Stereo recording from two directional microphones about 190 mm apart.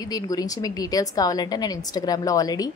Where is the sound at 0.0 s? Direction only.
20° left (ahead or behind).